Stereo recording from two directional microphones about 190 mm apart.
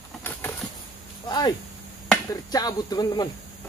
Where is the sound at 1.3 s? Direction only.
20° left (ahead or behind).